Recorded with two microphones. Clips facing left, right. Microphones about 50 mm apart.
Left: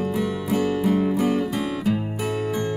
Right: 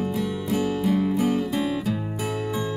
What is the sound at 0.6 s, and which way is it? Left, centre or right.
Music, centre.